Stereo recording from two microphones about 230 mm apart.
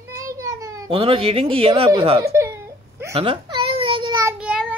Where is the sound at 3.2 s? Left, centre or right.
Right.